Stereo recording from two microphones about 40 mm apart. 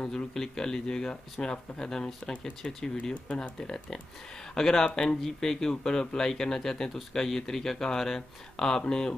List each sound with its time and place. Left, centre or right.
0.1 s speech: centre